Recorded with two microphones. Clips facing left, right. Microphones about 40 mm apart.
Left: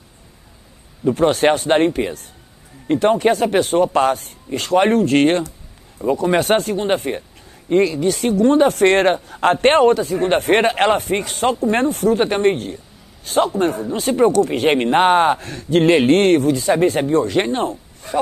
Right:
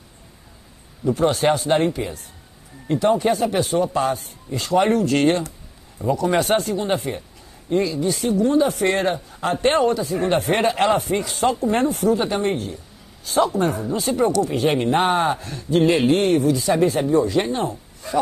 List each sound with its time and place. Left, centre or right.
1.0 s speech: left
6.0 s speech: left